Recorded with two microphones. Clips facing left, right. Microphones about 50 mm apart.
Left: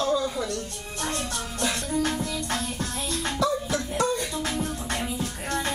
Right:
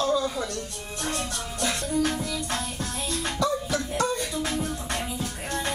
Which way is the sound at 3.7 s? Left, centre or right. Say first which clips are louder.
Left 1 dB; centre.